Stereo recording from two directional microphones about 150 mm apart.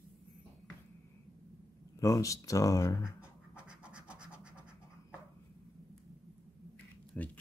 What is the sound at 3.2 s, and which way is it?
Scratch, 5° right (ahead or behind).